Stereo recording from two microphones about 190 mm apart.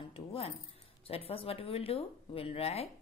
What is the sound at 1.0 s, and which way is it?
Speech, 30° left (ahead or behind).